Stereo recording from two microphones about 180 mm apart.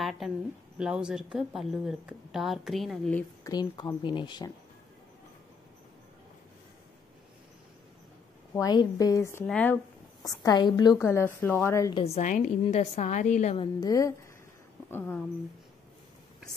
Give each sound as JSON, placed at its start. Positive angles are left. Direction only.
{"t": 0.0, "sound": "a sound", "side_deg": 0}
{"t": 0.7, "sound": "speech", "side_deg": -5}
{"t": 3.4, "sound": "speech", "side_deg": 20}
{"t": 8.5, "sound": "a woman's voice", "side_deg": 20}
{"t": 10.2, "sound": "a woman's voice", "side_deg": 20}
{"t": 11.9, "sound": "a woman's voice", "side_deg": 35}
{"t": 13.6, "sound": "a woman's voice", "side_deg": 20}